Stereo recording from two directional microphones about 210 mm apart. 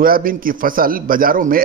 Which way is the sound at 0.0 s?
45° right (ahead or behind).